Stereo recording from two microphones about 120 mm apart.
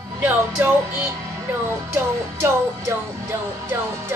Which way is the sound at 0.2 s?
15° right (ahead or behind).